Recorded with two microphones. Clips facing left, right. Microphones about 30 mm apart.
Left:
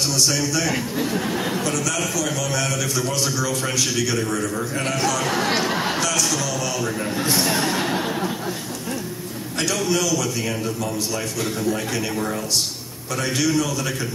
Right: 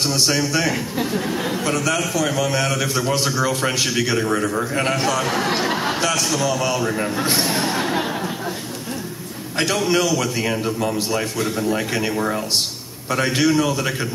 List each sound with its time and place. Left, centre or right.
0.0 s a man's voice: right
0.7 s speech: centre
1.6 s a man's voice: right
5.2 s speech: centre
5.9 s a man's voice: right
7.4 s speech: centre
9.6 s a man's voice: right